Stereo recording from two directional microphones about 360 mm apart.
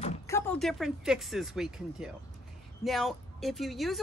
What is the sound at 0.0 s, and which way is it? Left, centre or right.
Speech, centre.